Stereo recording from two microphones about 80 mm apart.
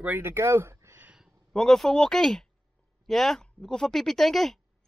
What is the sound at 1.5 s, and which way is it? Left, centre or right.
Speech, centre.